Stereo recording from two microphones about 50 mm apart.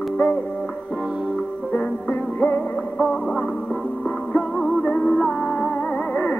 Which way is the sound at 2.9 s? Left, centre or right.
Centre.